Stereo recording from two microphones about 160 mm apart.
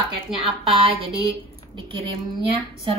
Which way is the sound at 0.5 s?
35° right (ahead or behind).